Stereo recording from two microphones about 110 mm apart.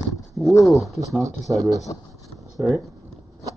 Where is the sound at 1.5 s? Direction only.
30° right (ahead or behind).